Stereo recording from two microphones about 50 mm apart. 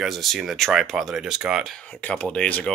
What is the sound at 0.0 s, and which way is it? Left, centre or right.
Speech, centre.